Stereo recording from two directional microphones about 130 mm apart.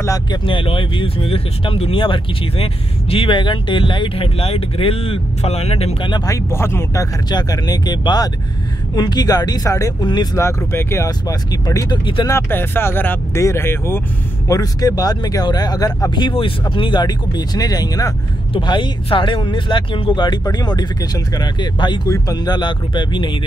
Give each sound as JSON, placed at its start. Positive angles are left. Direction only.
{"t": 0.3, "sound": "speech", "side_deg": 40}
{"t": 6.0, "sound": "speech", "side_deg": 30}
{"t": 10.3, "sound": "speech", "side_deg": 20}
{"t": 12.4, "sound": "speech", "side_deg": 15}